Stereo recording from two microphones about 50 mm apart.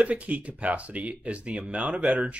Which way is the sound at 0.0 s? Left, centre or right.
Right.